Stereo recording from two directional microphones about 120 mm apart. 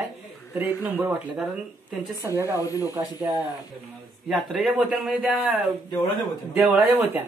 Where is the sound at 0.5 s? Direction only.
15° right (ahead or behind).